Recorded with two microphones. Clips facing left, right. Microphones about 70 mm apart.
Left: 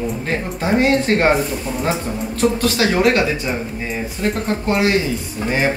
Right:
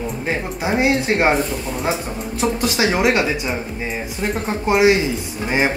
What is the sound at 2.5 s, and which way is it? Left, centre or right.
Speech, centre.